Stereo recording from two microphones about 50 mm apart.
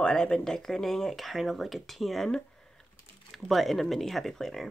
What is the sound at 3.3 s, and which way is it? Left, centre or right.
Speech, centre.